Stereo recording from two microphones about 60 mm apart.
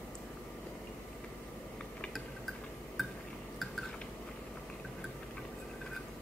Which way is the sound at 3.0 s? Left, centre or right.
Centre.